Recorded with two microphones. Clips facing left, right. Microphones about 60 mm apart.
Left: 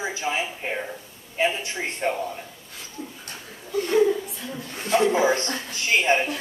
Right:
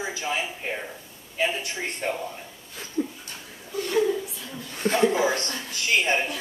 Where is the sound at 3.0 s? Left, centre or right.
Right.